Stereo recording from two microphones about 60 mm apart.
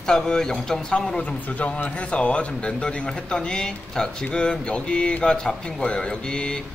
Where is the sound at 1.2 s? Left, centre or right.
Left.